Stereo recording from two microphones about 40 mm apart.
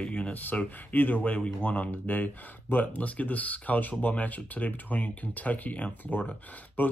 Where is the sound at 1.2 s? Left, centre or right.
Left.